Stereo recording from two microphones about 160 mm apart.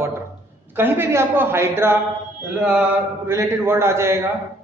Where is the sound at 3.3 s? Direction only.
15° right (ahead or behind).